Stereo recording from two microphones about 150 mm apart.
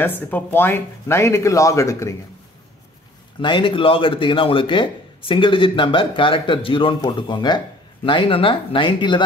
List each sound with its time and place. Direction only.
0.0 s speech: 10° left (ahead or behind)
3.3 s speech: 35° left (ahead or behind)